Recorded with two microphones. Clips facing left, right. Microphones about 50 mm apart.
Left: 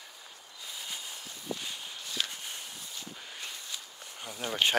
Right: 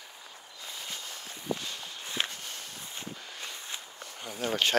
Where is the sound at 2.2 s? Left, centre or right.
Right.